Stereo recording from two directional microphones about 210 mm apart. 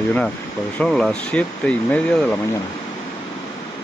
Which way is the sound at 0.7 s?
5° left (ahead or behind).